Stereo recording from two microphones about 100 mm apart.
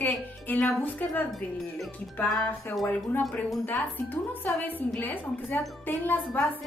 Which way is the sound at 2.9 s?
15° left (ahead or behind).